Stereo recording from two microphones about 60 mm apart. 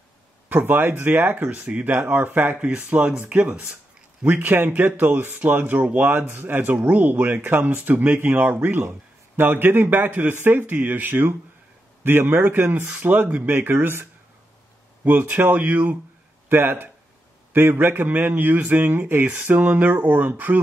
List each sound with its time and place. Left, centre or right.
0.5 s speech: right
2.7 s speech: centre; by 14.0 s right
15.0 s speech: right
16.4 s speech: right